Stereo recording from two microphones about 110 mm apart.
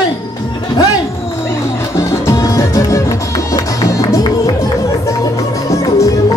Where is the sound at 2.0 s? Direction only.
25° left (ahead or behind).